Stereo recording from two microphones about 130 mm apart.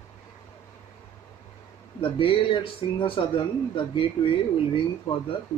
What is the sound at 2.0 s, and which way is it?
Speech, 45° left (ahead or behind).